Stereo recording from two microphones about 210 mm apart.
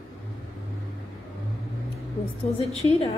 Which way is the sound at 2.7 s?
30° left (ahead or behind).